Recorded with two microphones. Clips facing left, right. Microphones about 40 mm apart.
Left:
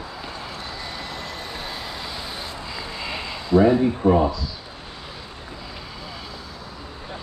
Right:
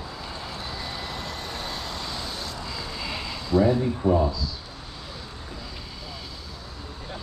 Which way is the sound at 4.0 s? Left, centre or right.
Left.